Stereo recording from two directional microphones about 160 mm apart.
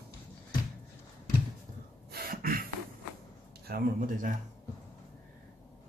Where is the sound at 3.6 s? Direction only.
65° right (ahead or behind).